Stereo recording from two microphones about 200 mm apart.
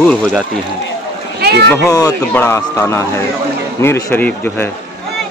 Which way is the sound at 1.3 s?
55° right (ahead or behind).